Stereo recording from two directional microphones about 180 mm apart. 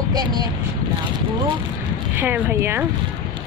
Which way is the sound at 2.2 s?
10° right (ahead or behind).